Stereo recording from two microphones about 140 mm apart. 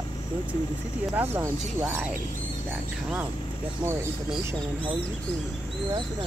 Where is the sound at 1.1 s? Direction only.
15° right (ahead or behind).